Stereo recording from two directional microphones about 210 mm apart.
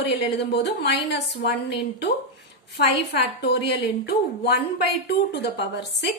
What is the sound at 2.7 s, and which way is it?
A woman's voice, 50° left (ahead or behind).